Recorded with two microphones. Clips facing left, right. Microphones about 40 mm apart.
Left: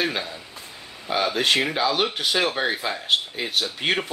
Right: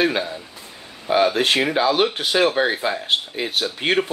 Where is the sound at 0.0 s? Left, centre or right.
Centre.